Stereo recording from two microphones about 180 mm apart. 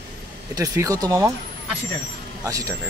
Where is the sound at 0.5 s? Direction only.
20° right (ahead or behind).